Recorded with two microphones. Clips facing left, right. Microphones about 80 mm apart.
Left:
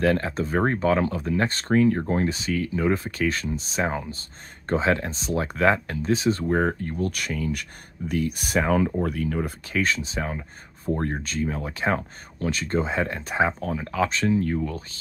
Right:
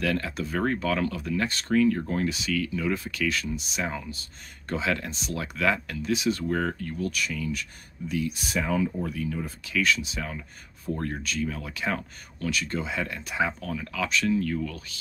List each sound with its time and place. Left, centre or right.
0.0 s speech: left
9.7 s speech: left